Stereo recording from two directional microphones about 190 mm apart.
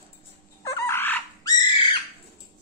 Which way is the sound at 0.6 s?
15° left (ahead or behind).